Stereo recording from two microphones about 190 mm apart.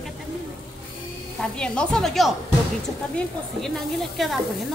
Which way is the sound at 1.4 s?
5° left (ahead or behind).